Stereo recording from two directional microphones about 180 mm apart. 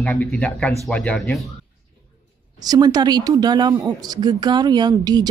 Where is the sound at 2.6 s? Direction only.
20° right (ahead or behind).